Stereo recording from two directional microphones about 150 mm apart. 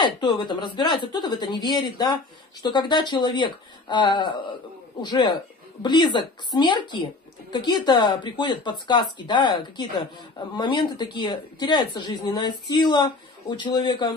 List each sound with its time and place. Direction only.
0.0 s a man's voice: 30° left (ahead or behind)